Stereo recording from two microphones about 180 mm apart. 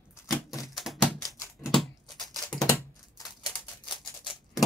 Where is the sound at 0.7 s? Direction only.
Centre (ahead or behind).